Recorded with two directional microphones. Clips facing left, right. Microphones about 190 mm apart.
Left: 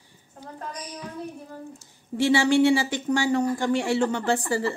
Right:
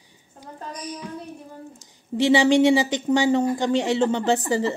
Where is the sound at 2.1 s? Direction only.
20° right (ahead or behind).